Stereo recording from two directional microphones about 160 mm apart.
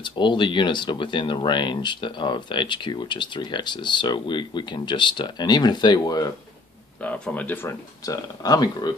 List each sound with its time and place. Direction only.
0.0 s speech: 30° left (ahead or behind)
7.0 s speech: 10° left (ahead or behind); by 8.9 s 25° left (ahead or behind)